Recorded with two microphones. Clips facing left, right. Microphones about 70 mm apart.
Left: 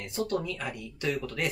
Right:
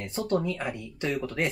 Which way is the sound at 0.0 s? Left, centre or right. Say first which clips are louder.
Right 3 dB; right.